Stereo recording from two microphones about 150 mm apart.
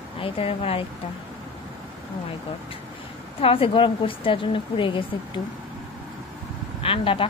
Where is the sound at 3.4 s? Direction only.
35° left (ahead or behind).